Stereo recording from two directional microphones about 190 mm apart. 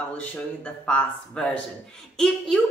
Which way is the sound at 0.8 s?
5° left (ahead or behind).